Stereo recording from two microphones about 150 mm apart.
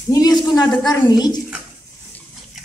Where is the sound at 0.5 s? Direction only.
30° left (ahead or behind).